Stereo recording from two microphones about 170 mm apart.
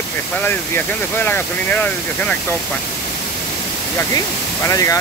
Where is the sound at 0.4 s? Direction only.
10° left (ahead or behind).